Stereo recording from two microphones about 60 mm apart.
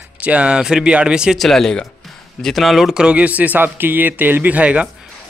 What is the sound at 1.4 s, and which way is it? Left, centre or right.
Speech, centre.